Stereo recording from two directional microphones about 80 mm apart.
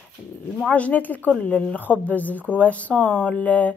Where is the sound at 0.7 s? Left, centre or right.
Centre.